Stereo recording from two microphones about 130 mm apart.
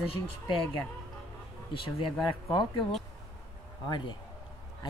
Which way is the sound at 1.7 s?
40° left (ahead or behind).